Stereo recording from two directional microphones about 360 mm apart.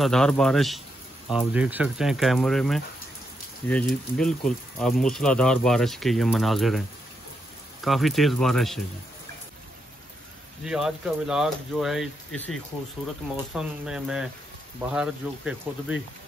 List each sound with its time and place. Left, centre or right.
0.0 s speech: centre
7.8 s speech: centre
10.6 s speech: centre
13.6 s speech: centre